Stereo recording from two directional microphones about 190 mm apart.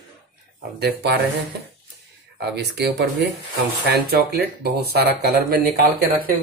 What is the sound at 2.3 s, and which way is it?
Speech, 60° right (ahead or behind).